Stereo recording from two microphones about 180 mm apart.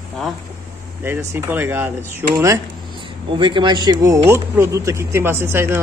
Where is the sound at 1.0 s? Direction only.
10° right (ahead or behind).